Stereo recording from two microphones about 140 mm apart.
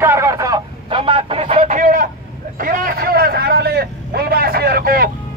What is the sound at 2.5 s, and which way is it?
Vehicle, 85° right.